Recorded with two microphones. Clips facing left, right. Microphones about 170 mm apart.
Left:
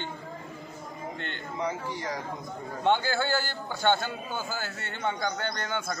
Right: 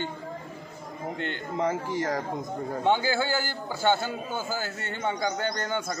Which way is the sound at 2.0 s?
50° right (ahead or behind).